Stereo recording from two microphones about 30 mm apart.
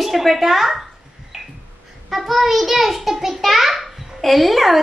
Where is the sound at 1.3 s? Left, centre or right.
Centre.